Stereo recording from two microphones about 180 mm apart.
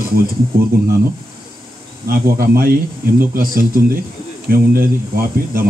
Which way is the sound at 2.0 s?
55° right (ahead or behind).